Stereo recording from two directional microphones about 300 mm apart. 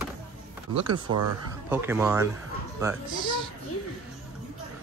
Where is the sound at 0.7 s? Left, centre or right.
Centre.